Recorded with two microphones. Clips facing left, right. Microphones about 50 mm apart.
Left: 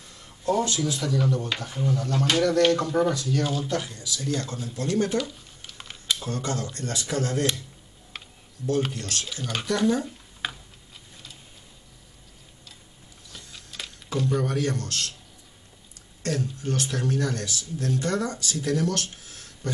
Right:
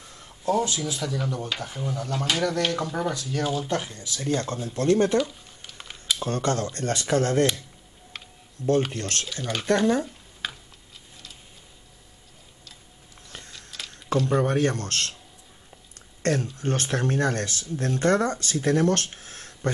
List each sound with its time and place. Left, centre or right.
0.7 s speech: centre
3.2 s speech: centre
3.6 s speech: right
5.1 s a sound: centre
6.2 s speech: right
8.6 s speech: right
9.3 s speech: centre
10.4 s tick-tock: centre
13.3 s a sound: right
14.0 s a sound: right
14.3 s speech: right
16.2 s speech: right